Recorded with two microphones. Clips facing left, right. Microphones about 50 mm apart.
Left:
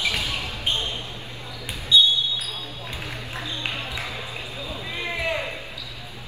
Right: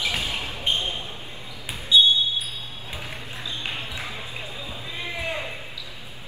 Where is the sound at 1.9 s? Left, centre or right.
Centre.